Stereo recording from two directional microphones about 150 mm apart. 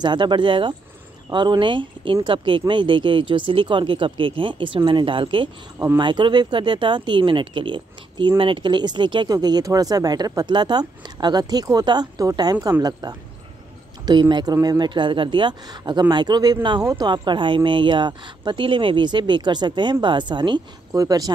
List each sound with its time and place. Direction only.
0.0 s speech: 30° right (ahead or behind)
12.5 s speech: 15° right (ahead or behind)
13.0 s speech: 25° right (ahead or behind)
14.3 s speech: 25° right (ahead or behind)